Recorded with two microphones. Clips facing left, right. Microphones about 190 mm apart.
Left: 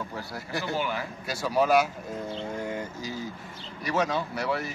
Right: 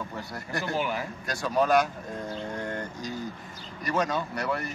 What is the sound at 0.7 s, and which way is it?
Speech, 15° right (ahead or behind).